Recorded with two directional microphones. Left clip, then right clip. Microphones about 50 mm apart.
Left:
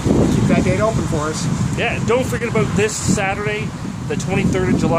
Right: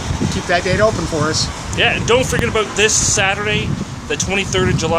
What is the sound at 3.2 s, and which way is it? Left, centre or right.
Speech, centre.